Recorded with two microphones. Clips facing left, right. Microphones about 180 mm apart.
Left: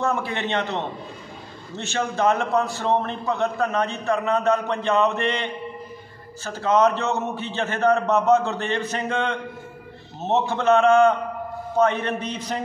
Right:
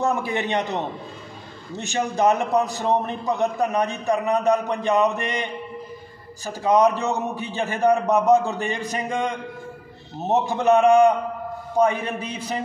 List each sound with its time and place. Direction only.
0.0 s a man's voice: 15° right (ahead or behind)